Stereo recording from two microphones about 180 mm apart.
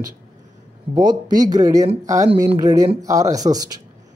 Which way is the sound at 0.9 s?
20° right (ahead or behind).